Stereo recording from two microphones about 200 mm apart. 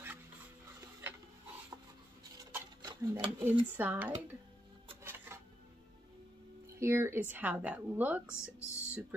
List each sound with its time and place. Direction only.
2.3 s stir: 20° right (ahead or behind)
3.7 s a woman's voice: 10° right (ahead or behind)
5.0 s music: 10° right (ahead or behind)
6.8 s a woman's voice: 10° right (ahead or behind)
8.4 s speech: 15° left (ahead or behind)